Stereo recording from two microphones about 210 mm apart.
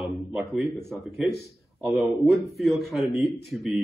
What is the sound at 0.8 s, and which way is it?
A man's voice, centre (ahead or behind).